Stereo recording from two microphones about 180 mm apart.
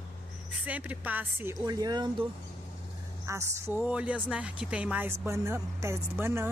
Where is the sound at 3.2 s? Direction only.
15° right (ahead or behind).